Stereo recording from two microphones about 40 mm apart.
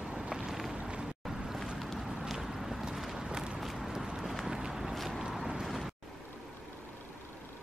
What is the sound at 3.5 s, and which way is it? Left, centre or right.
Vehicle, centre.